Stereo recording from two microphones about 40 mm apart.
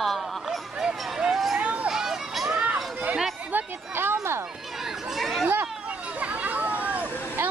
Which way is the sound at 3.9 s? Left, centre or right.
Right.